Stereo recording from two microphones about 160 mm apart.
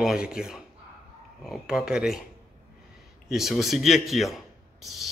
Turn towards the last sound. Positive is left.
turn(degrees=0)  # may be behind; listen again after turning